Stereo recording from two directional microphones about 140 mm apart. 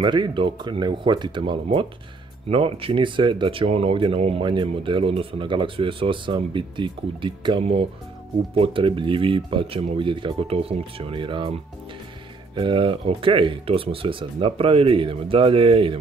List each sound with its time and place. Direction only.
0.0 s speech: 35° right (ahead or behind)
12.5 s speech: 35° right (ahead or behind)